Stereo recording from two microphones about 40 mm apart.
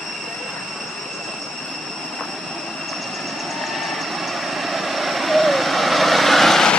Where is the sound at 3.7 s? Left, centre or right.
Centre.